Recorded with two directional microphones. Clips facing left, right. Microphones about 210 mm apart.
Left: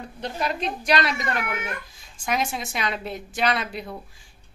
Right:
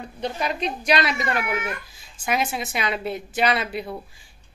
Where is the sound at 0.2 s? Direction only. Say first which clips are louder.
Right 1 dB; centre (ahead or behind).